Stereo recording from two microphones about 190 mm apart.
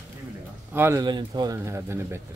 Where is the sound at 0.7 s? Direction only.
10° right (ahead or behind).